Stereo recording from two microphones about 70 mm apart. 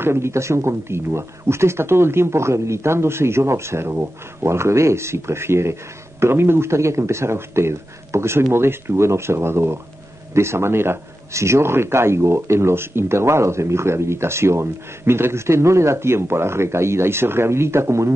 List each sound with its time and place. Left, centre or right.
0.0 s speech: right